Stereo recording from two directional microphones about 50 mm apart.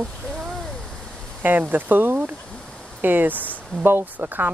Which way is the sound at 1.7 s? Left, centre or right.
Right.